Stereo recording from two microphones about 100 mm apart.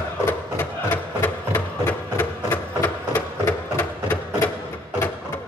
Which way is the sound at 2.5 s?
20° left (ahead or behind).